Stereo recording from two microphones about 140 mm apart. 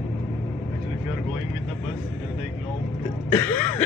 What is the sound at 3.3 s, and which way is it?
Throat clearing, 15° left (ahead or behind).